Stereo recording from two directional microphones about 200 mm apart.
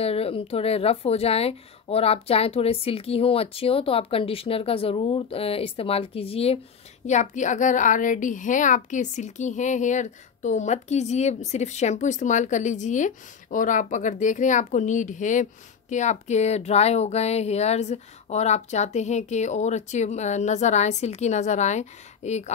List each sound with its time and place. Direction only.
0.0 s a woman's voice: 30° left (ahead or behind)